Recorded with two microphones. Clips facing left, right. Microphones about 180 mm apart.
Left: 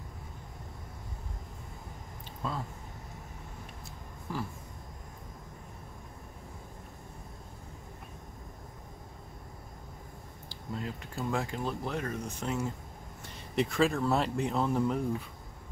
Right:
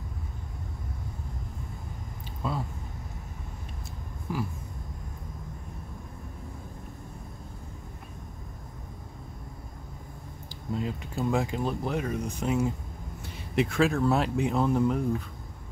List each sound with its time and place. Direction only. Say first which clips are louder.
4.3 s a sound: right 4 dB; 10° right (ahead or behind)
10.5 s speech: right 6 dB; 20° right (ahead or behind)
13.6 s speech: right 3 dB; 5° right (ahead or behind)